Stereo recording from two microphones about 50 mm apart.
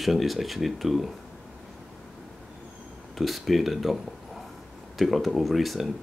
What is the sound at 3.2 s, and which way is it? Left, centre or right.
Speech, centre.